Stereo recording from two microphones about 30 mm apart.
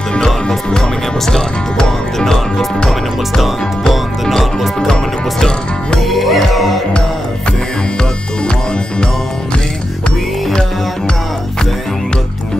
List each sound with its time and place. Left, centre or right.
0.5 s music: left
2.1 s speech: centre
4.3 s speech: centre
5.9 s music: centre